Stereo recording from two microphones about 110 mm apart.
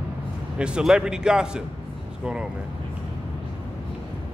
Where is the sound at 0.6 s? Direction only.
10° right (ahead or behind).